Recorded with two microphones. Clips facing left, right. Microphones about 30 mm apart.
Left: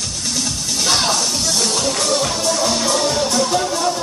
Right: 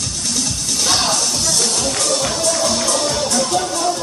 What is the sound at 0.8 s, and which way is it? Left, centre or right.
Music, centre.